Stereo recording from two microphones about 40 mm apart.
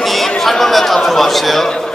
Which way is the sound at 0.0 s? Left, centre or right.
Centre.